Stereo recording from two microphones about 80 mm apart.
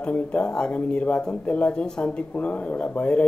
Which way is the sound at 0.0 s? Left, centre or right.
Centre.